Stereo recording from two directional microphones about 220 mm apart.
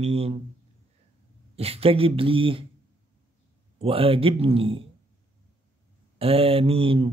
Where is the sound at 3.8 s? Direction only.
25° right (ahead or behind).